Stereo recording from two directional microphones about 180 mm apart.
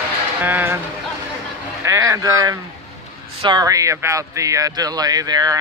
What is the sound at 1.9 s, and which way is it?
Speech, 15° right (ahead or behind).